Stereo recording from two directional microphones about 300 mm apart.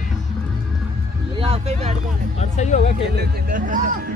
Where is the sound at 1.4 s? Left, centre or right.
Right.